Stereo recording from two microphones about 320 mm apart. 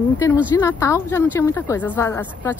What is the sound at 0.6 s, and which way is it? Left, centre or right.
Speech, centre.